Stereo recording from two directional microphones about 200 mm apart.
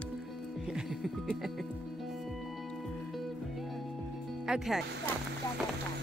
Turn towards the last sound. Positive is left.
turn(degrees=0)  # may be behind; listen again after turning